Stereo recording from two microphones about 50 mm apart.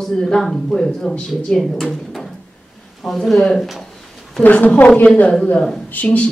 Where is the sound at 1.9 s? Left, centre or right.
Centre.